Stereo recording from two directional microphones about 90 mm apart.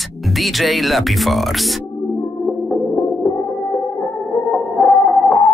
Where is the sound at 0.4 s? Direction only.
Centre (ahead or behind).